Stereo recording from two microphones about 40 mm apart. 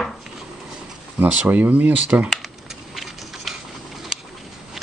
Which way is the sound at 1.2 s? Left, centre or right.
Right.